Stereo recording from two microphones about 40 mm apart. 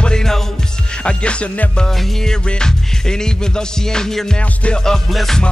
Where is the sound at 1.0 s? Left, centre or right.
Left.